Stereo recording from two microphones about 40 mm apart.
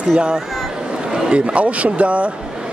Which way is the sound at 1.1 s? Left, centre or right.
Centre.